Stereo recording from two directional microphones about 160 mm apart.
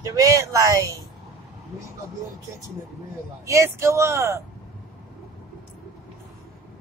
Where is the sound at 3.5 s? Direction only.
20° right (ahead or behind).